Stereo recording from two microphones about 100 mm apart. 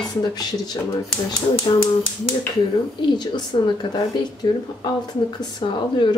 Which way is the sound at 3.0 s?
50° left (ahead or behind).